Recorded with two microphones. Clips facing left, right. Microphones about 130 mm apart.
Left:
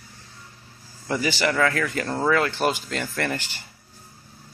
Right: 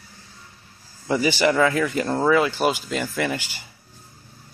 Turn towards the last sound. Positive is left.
turn(degrees=-5)  # may be behind; listen again after turning